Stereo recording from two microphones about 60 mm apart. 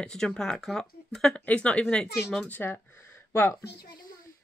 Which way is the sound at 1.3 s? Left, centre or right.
Left.